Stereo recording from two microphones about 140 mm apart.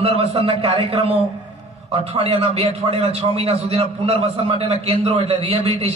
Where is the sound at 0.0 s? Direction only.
45° right (ahead or behind).